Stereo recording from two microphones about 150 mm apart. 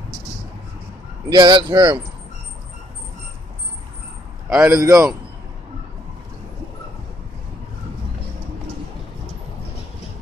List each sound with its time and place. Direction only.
1.3 s speech: 30° right (ahead or behind)
4.6 s a man's voice: 20° right (ahead or behind)